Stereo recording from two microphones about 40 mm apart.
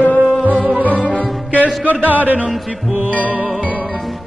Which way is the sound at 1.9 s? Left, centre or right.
Right.